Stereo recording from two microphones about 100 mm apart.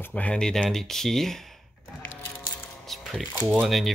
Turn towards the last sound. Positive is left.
turn(degrees=0)  # may be behind; listen again after turning